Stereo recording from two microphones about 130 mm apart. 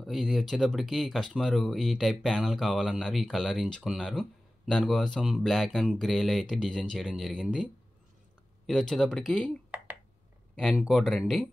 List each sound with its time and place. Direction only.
0.0 s speech: centre (ahead or behind)